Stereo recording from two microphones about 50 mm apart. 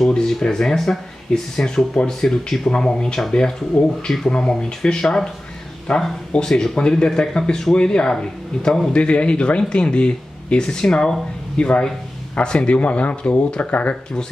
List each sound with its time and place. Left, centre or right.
0.1 s speech: centre
8.9 s speech: left